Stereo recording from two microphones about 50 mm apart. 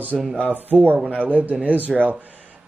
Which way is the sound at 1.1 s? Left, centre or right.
Right.